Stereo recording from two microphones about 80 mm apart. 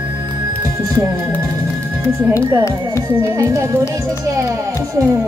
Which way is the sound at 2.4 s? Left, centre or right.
Right.